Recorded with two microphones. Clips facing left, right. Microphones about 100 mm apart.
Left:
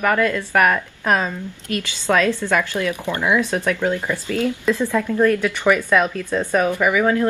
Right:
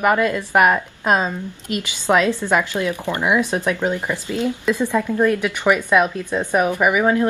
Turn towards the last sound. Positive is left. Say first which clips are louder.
# right 1 dB
turn(degrees=-20)  # may be behind; listen again after turning